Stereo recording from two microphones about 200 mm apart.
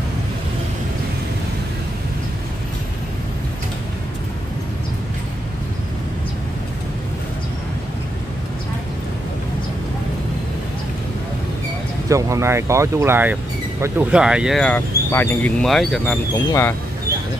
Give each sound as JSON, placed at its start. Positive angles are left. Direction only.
{"t": 12.1, "sound": "speech", "side_deg": -15}
{"t": 16.3, "sound": "speech", "side_deg": 10}